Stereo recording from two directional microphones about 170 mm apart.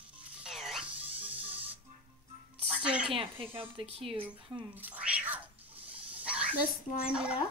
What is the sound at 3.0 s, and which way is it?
A woman's voice, 30° right (ahead or behind).